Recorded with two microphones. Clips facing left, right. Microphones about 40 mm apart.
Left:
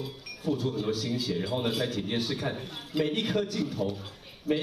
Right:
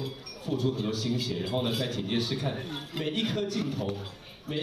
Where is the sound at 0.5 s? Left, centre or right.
Right.